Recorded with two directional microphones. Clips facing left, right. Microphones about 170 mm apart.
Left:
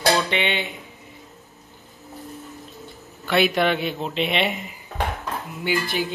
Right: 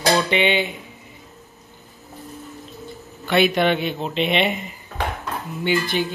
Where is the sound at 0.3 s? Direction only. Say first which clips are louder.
Right 5 dB; centre (ahead or behind).